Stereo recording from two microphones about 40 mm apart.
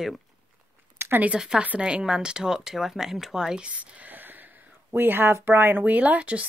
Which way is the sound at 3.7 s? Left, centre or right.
Right.